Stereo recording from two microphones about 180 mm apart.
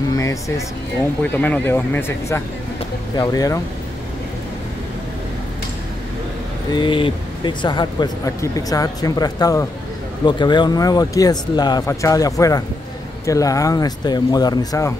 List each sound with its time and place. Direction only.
0.2 s speech: 15° left (ahead or behind)
6.7 s speech: 25° left (ahead or behind)